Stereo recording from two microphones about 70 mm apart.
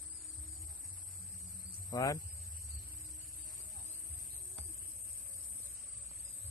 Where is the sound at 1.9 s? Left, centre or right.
Left.